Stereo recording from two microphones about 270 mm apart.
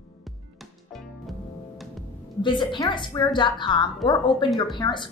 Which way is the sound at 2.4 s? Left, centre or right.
Centre.